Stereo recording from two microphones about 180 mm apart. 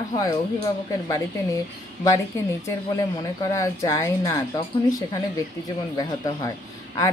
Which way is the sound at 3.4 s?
15° left (ahead or behind).